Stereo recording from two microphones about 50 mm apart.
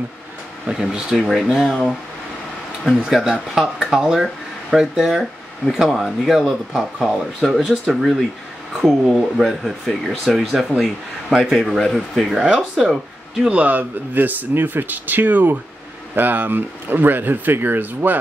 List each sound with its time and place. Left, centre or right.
0.7 s speech: centre
2.8 s speech: centre
13.4 s speech: right